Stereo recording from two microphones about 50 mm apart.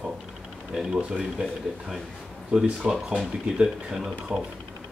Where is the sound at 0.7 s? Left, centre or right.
Centre.